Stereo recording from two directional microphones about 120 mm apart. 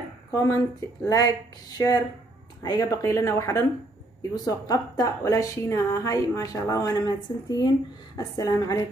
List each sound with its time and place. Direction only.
0.3 s a woman's voice: 25° left (ahead or behind)